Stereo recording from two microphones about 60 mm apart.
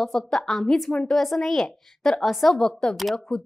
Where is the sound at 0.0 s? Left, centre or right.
Centre.